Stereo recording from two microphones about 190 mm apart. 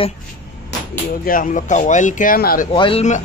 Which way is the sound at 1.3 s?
45° left (ahead or behind).